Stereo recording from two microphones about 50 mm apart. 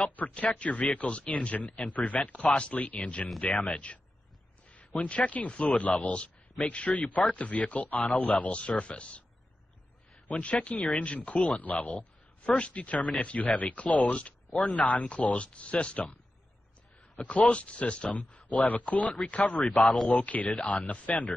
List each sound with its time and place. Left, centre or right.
0.0 s speech: left
3.5 s speech: centre
4.6 s speech: left
8.3 s speech: left
10.2 s speech: left
17.2 s speech: left
19.6 s speech: centre
20.1 s speech: left